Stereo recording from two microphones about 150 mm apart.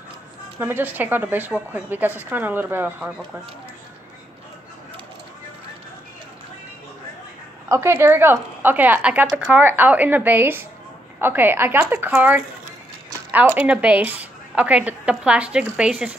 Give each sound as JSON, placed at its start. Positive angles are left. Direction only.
{"t": 0.6, "sound": "a woman's voice", "side_deg": -10}
{"t": 7.6, "sound": "a woman's voice", "side_deg": -20}